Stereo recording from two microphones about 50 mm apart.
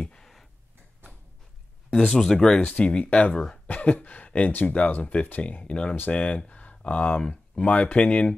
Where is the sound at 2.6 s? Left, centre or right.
Left.